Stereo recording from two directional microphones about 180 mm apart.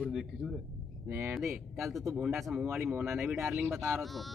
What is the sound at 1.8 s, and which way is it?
Speech, centre (ahead or behind).